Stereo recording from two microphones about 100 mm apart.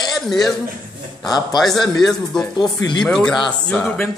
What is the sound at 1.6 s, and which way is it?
A man's voice, centre (ahead or behind).